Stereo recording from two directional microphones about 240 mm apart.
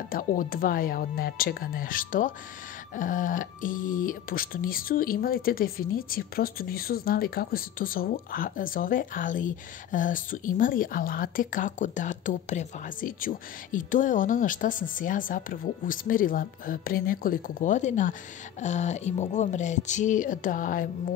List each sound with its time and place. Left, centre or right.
0.1 s speech: left